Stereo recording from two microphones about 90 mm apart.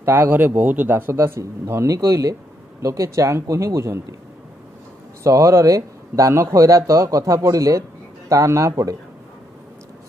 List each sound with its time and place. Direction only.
0.0 s a man's voice: 25° right (ahead or behind)
5.2 s speech: 35° right (ahead or behind)